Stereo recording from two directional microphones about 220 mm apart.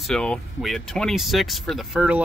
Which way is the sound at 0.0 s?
5° left (ahead or behind).